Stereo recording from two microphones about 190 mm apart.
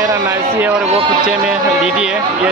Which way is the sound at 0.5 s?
10° right (ahead or behind).